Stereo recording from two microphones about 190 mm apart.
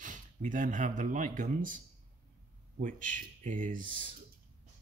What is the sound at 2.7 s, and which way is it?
Speech, 45° right (ahead or behind).